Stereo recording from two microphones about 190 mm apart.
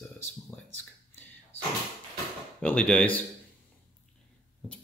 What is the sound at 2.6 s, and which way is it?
Speech, 5° left (ahead or behind).